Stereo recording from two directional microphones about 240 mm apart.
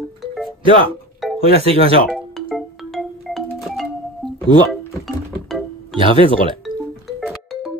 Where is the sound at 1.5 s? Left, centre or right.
Right.